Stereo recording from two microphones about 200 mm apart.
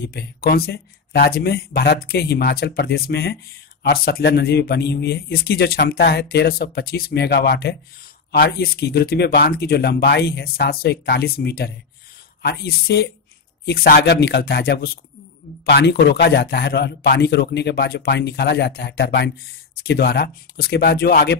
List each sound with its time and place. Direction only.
0.1 s a man's voice: 50° left (ahead or behind)